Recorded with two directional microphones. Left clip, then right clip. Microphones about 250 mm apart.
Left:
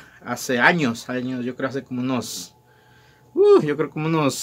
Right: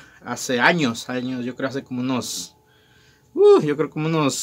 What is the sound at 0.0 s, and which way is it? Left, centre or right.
Speech, centre.